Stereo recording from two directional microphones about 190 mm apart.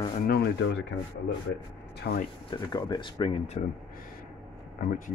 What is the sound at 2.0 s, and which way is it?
Speech, 60° left (ahead or behind).